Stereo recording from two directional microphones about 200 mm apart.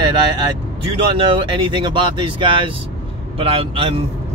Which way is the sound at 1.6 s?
25° right (ahead or behind).